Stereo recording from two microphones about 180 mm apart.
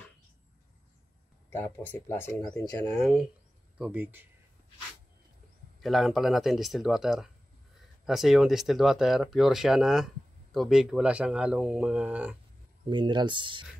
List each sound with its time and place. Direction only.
1.5 s speech: 10° left (ahead or behind)
2.8 s speech: centre (ahead or behind)
5.8 s speech: centre (ahead or behind)
12.8 s speech: 25° right (ahead or behind)